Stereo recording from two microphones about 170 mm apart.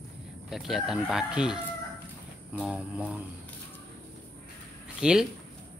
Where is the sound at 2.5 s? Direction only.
5° right (ahead or behind).